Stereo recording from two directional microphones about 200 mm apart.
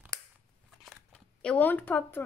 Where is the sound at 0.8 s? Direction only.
5° left (ahead or behind).